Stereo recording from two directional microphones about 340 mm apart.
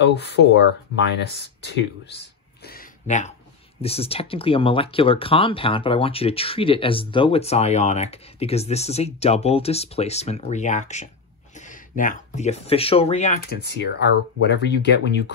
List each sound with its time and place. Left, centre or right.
0.0 s speech: left